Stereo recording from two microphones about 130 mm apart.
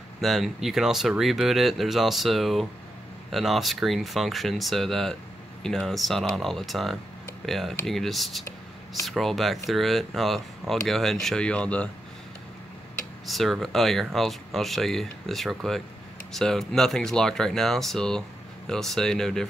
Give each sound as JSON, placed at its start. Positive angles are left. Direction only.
{"t": 0.2, "sound": "speech", "side_deg": 0}
{"t": 13.3, "sound": "speech", "side_deg": 0}